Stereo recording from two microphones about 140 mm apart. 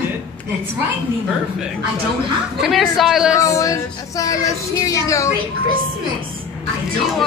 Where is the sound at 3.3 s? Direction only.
25° left (ahead or behind).